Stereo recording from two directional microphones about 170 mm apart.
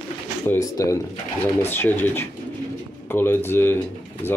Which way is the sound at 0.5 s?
20° left (ahead or behind).